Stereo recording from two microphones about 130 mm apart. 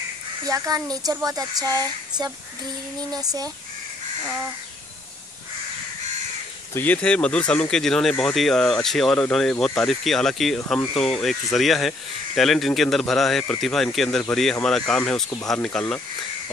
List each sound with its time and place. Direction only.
0.4 s speech: 25° right (ahead or behind)
6.7 s speech: 15° left (ahead or behind)